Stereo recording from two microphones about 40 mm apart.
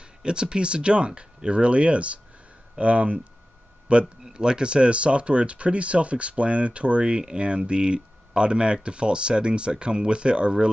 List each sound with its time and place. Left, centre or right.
0.2 s speech: right
4.2 s speech: centre